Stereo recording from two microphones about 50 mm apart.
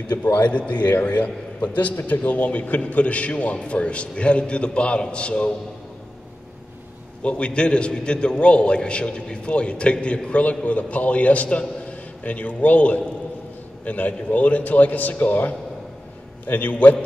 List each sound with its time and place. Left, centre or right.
0.1 s a man's voice: left
0.5 s a man's voice: left
7.2 s a man's voice: left